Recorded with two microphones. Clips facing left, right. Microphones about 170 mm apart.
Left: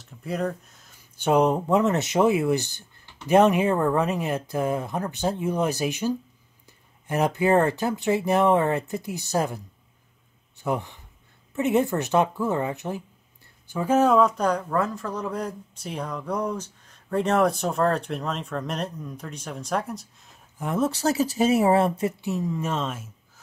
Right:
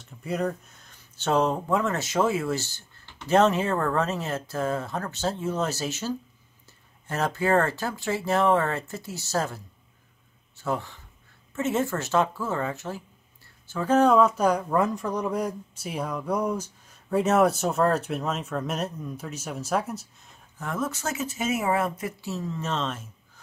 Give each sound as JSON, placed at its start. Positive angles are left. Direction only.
{"t": 0.0, "sound": "speech", "side_deg": 0}
{"t": 1.1, "sound": "speech", "side_deg": 15}
{"t": 10.6, "sound": "speech", "side_deg": 20}
{"t": 20.5, "sound": "speech", "side_deg": 20}
{"t": 20.8, "sound": "speech", "side_deg": 35}